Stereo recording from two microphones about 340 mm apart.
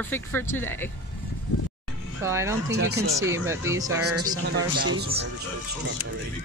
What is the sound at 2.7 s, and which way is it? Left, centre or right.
Speech, right.